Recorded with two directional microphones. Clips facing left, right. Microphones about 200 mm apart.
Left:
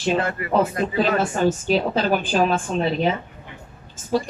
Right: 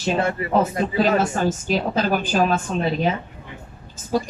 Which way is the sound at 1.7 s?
40° right (ahead or behind).